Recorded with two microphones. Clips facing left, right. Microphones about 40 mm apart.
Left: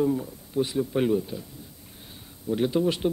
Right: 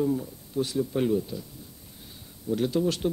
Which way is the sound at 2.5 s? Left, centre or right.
Centre.